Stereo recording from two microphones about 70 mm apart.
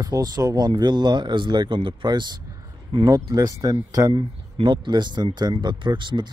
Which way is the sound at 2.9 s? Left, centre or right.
Right.